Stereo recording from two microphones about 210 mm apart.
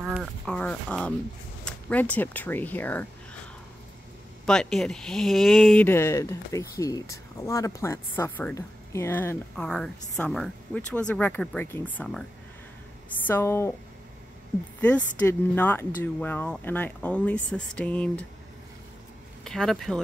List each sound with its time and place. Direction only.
0.0 s speech: centre (ahead or behind)
4.5 s speech: 5° left (ahead or behind)
13.3 s speech: 10° left (ahead or behind)
14.8 s speech: 5° left (ahead or behind)
19.4 s speech: centre (ahead or behind)